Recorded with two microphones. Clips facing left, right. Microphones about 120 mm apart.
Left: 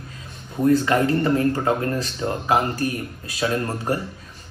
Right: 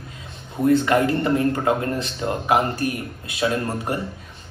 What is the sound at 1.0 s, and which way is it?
Speech, 25° right (ahead or behind).